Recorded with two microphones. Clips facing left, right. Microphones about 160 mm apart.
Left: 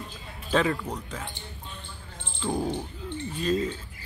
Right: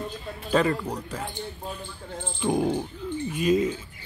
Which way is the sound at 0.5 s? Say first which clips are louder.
Right 2 dB; centre (ahead or behind).